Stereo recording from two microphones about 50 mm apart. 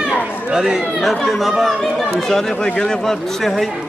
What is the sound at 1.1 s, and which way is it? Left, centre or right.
A man's voice, centre.